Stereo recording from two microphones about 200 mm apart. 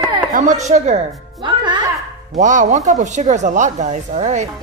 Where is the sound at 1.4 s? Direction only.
20° right (ahead or behind).